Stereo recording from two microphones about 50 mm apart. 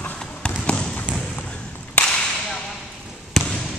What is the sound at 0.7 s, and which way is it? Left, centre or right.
Trickle, centre.